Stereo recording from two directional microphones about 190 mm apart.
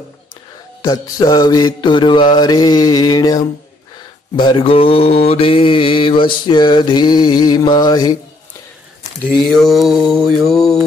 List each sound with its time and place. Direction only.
0.8 s mantra: 20° left (ahead or behind)
9.5 s mantra: centre (ahead or behind)